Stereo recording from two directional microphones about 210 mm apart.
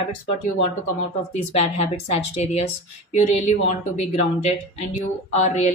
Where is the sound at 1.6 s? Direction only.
30° left (ahead or behind).